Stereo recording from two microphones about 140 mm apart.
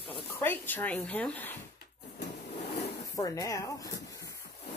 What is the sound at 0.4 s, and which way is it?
Speech, 15° left (ahead or behind).